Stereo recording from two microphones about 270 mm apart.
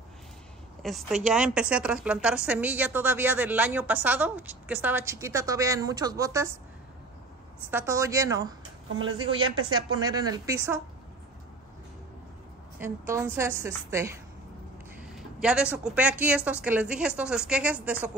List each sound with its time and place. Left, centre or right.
0.8 s a woman's voice: centre
7.7 s a woman's voice: centre
12.8 s a woman's voice: centre
15.1 s a woman's voice: centre